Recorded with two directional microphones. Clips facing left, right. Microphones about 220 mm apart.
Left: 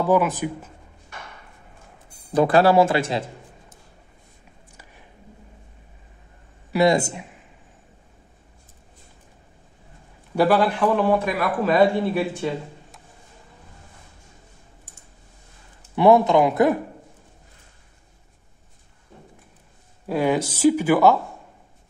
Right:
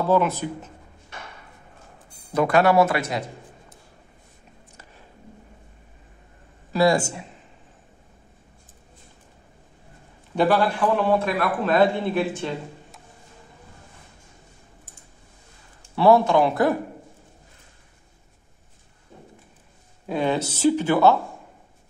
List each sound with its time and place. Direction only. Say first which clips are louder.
0.1 s speech: even; 15° left (ahead or behind)
2.3 s speech: left 2 dB; 30° left (ahead or behind)
6.7 s speech: left 1 dB; 20° left (ahead or behind)
10.3 s speech: left 2 dB; 10° left (ahead or behind)
16.0 s speech: left 1 dB; 20° left (ahead or behind)
20.1 s speech: left 2 dB; 10° left (ahead or behind)